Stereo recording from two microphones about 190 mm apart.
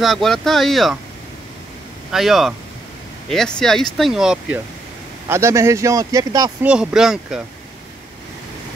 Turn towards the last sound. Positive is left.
turn(degrees=-5)  # may be behind; listen again after turning